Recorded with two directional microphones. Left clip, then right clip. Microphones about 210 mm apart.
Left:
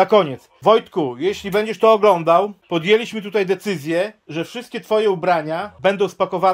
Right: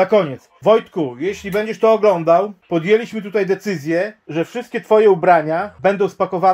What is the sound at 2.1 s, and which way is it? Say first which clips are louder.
Speech: right 1 dB; 20° left (ahead or behind).